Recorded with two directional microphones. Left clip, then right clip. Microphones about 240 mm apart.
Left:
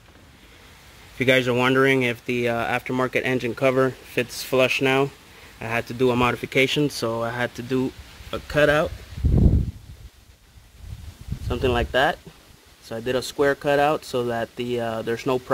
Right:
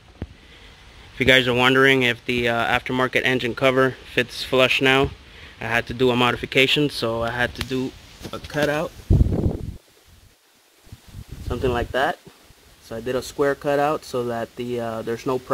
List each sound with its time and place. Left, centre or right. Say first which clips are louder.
1.1 s speech: right 3 dB; centre
11.4 s speech: left 1 dB; centre